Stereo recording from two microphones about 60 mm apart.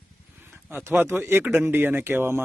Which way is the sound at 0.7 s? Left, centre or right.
Right.